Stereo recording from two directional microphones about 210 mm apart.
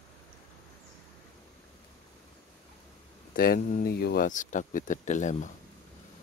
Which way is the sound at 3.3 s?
45° left (ahead or behind).